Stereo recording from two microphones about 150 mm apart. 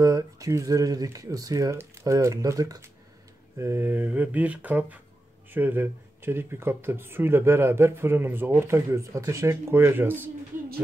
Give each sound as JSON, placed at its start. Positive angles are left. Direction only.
{"t": 0.0, "sound": "speech", "side_deg": -20}